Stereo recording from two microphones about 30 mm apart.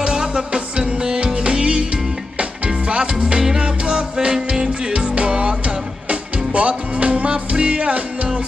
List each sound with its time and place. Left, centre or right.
0.0 s music: right
2.9 s music: right